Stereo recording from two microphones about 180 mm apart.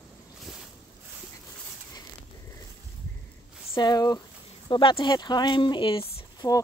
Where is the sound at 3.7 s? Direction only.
20° left (ahead or behind).